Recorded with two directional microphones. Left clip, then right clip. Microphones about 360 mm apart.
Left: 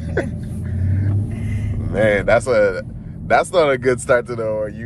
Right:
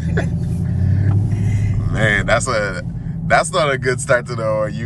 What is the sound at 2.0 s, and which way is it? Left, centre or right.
Speech, centre.